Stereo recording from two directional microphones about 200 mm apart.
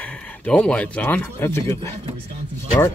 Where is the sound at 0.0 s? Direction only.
5° left (ahead or behind).